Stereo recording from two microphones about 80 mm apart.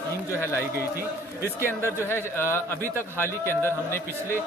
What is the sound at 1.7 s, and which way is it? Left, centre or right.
A man's voice, left.